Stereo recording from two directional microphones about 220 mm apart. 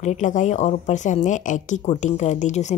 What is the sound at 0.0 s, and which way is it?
A woman's voice, 35° left (ahead or behind).